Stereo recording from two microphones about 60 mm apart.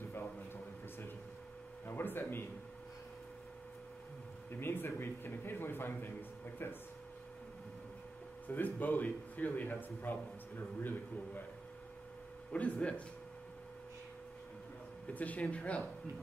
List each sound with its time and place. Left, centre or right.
1.9 s a sound: left
4.5 s a man's voice: left
8.5 s a man's voice: left
12.5 s speech: left
15.0 s speech: left